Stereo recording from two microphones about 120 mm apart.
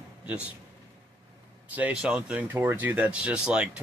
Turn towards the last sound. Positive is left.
turn(degrees=-10)  # may be behind; listen again after turning